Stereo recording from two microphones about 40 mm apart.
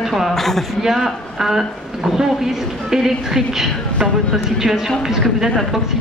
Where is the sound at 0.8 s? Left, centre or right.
Centre.